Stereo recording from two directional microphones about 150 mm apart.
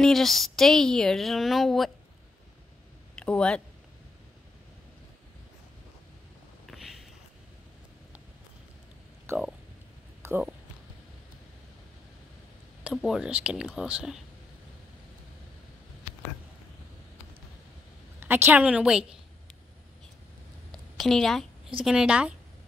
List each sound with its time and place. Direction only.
0.0 s a woman's voice: centre (ahead or behind)
3.2 s speech: 5° left (ahead or behind)
6.6 s a sound: centre (ahead or behind)
9.2 s speech: 15° right (ahead or behind)
10.2 s a sound: 20° right (ahead or behind)
12.8 s a woman's voice: 5° right (ahead or behind)
18.2 s a woman's voice: 15° right (ahead or behind)
21.0 s a woman's voice: centre (ahead or behind)